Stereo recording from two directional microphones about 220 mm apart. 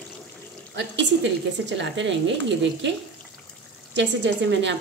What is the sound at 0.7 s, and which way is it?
A woman's voice, 55° right (ahead or behind).